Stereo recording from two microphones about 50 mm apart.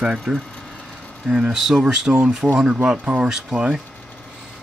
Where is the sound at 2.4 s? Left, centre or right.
Right.